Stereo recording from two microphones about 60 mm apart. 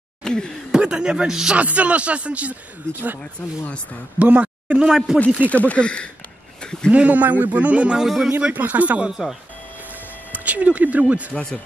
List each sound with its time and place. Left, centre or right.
0.2 s chuckle: centre
0.7 s a man's voice: centre
1.6 s a man's voice: right
2.9 s speech: right
4.2 s a sound: right
4.7 s speech: centre
5.5 s speech: left
6.6 s a sound: centre
6.9 s a man's voice: right
8.0 s speech: centre
8.3 s a man's voice: right
10.3 s a man's voice: right